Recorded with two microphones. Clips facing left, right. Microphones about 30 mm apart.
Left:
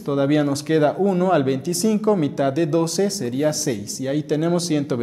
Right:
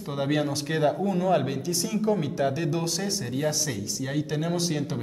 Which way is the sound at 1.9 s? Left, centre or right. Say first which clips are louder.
Left 8 dB; left.